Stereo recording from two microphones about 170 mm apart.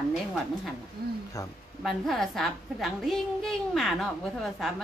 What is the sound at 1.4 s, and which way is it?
Speech, 20° left (ahead or behind).